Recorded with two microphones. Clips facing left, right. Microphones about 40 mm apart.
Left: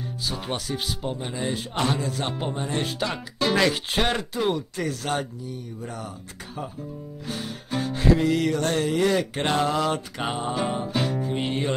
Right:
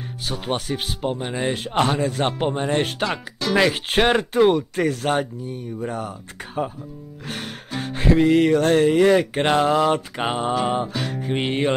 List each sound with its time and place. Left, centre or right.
0.5 s speech: right
7.2 s music: right
7.7 s speech: right
9.6 s music: centre